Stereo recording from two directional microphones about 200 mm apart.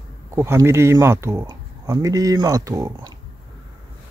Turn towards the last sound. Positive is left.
turn(degrees=-15)  # may be behind; listen again after turning